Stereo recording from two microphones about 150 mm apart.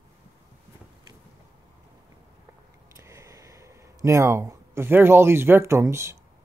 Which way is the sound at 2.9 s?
20° right (ahead or behind).